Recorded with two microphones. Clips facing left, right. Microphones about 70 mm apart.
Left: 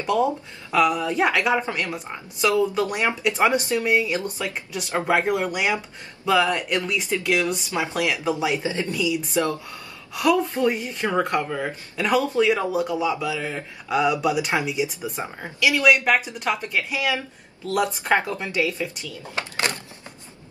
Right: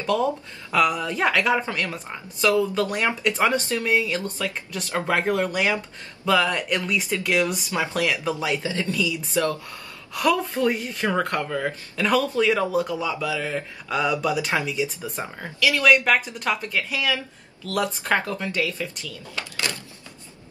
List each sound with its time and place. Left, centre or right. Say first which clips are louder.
0.0 s speech: left 1 dB; centre
5.1 s speech: left 1 dB; centre
8.6 s speech: left 1 dB; left
10.1 s speech: left 2 dB; centre; by 19.8 s left